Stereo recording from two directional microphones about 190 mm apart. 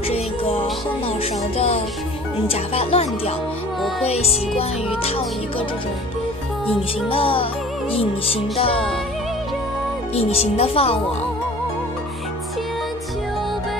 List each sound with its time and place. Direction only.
0.1 s music: 30° left (ahead or behind)
2.4 s speech: 30° left (ahead or behind)
4.6 s music: 30° left (ahead or behind)
7.1 s music: 30° left (ahead or behind)
10.1 s speech: 35° left (ahead or behind)